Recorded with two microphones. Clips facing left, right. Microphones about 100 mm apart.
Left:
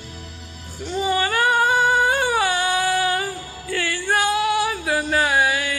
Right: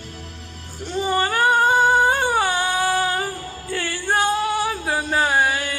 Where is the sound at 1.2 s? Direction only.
30° right (ahead or behind).